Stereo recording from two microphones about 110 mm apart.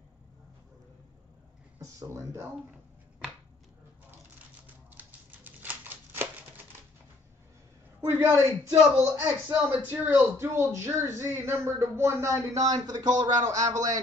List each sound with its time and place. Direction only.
1.8 s speech: 30° right (ahead or behind)
4.9 s typewriter: 15° right (ahead or behind)
8.0 s speech: 25° right (ahead or behind)